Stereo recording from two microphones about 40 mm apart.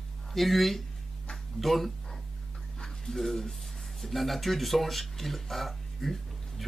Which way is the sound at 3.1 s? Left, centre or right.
Centre.